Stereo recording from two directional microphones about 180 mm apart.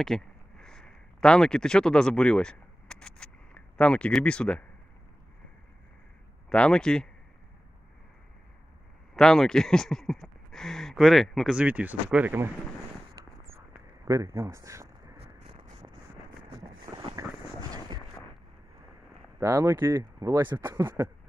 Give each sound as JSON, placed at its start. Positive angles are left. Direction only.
{"t": 0.0, "sound": "a sound", "side_deg": 5}
{"t": 6.5, "sound": "speech", "side_deg": 5}
{"t": 9.1, "sound": "speech", "side_deg": 0}
{"t": 14.0, "sound": "speech", "side_deg": -20}
{"t": 16.9, "sound": "vehicle", "side_deg": -20}
{"t": 19.4, "sound": "speech", "side_deg": -15}